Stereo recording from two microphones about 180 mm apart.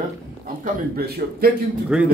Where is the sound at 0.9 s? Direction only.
60° right (ahead or behind).